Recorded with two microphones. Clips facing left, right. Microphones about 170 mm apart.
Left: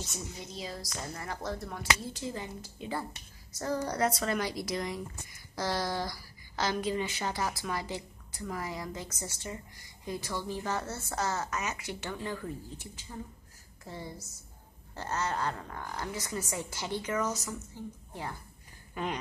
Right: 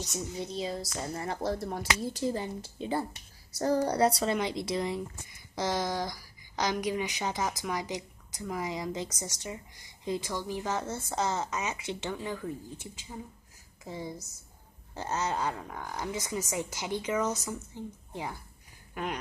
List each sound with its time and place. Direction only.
0.0 s a woman's voice: 25° right (ahead or behind)
12.2 s a woman's voice: 10° right (ahead or behind)